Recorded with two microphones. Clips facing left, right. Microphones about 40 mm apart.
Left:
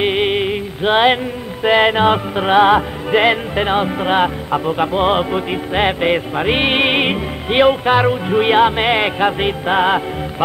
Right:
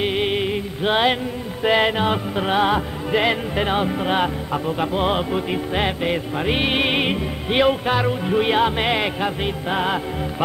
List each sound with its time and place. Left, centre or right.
0.0 s music: left